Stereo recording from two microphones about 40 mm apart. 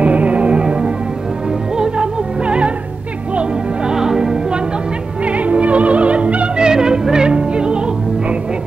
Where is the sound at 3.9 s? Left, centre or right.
Centre.